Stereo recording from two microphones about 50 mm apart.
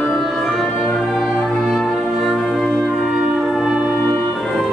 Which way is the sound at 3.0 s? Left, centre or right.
Centre.